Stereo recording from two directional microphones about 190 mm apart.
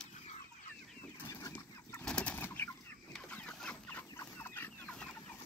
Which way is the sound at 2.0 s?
5° left (ahead or behind).